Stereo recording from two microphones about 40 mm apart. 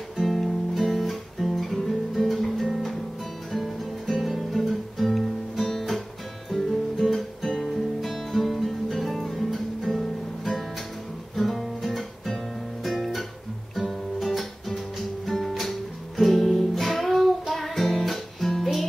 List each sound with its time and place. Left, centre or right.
0.2 s guitar: centre
7.1 s guitar: centre
11.3 s music: centre
12.8 s guitar: centre
13.7 s music: centre